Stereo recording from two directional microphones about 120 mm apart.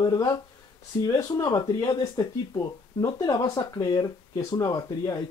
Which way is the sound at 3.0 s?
35° left (ahead or behind).